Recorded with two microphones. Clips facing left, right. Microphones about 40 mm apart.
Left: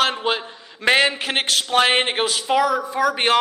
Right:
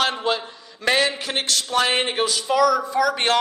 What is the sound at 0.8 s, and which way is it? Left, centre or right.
A man's voice, left.